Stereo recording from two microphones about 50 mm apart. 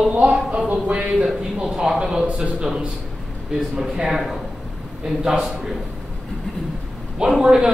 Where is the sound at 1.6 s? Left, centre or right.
Centre.